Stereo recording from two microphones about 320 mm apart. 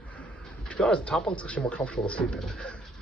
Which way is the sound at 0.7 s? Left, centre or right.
Centre.